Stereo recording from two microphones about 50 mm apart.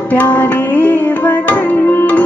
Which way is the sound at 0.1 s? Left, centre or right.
Left.